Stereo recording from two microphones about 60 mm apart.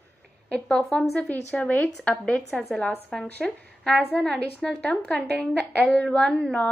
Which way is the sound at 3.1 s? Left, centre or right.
Centre.